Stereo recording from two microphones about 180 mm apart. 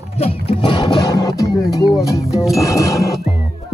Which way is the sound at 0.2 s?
30° left (ahead or behind).